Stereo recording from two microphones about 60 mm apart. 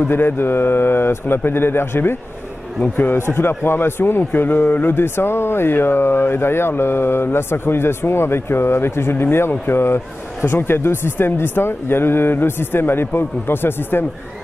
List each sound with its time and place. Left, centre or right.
0.0 s a man's voice: left